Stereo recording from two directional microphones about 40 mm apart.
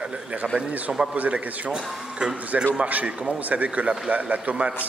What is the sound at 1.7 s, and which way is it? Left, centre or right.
Speech, right.